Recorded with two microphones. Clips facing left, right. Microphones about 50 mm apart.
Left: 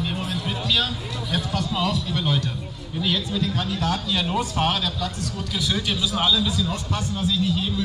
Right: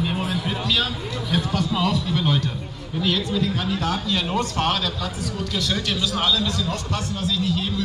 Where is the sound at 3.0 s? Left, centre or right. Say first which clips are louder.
Right 2 dB; centre.